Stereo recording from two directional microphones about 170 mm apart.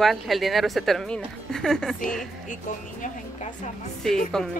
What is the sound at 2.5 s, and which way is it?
Speech, 50° left (ahead or behind).